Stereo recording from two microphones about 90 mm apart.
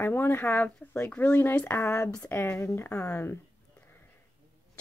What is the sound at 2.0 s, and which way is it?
Speech, 10° left (ahead or behind).